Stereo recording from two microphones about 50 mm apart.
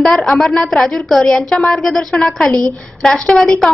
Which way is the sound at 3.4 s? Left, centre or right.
Centre.